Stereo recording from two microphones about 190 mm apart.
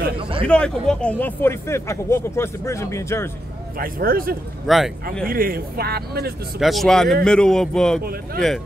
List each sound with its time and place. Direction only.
0.2 s speech: 30° right (ahead or behind)
0.5 s speech: 5° left (ahead or behind)
3.7 s speech: 50° right (ahead or behind)
4.6 s speech: centre (ahead or behind)
5.3 s speech: 50° right (ahead or behind)
6.6 s speech: centre (ahead or behind)